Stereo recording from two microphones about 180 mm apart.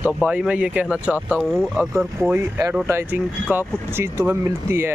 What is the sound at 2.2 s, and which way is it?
Speech, 15° right (ahead or behind).